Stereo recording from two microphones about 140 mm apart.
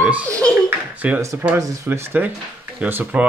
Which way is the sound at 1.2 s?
20° right (ahead or behind).